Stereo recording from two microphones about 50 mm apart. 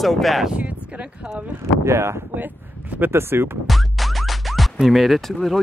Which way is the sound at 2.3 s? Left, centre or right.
Right.